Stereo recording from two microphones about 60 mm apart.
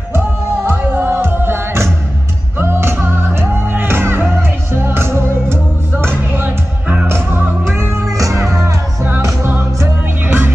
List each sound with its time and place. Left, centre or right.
0.7 s music: right
8.1 s music: right
10.2 s music: right